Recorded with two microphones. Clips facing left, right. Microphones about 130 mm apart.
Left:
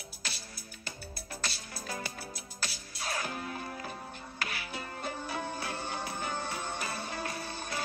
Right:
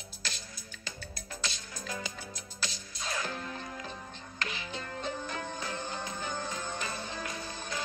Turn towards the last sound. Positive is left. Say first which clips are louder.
# left 1 dB
turn(degrees=5)  # may be behind; listen again after turning